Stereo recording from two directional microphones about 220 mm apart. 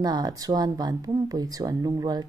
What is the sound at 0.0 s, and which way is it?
A woman's voice, 20° right (ahead or behind).